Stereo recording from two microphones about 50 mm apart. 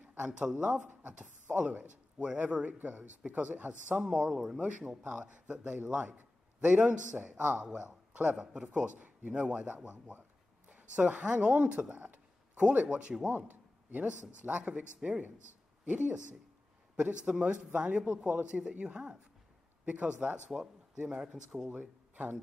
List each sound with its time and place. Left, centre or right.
0.2 s a woman's voice: centre
2.2 s speech: centre
2.6 s a woman's voice: right
4.0 s speech: centre
4.6 s a woman's voice: right
6.1 s a sound: right
7.2 s speech: right
8.9 s a man's voice: right
9.3 s a woman's voice: right
13.5 s a sound: right
14.6 s a woman's voice: right
16.9 s a woman's voice: centre
21.0 s a woman's voice: centre
21.7 s speech: right